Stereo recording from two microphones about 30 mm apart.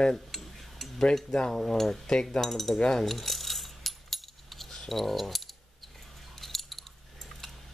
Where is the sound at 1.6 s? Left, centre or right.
Centre.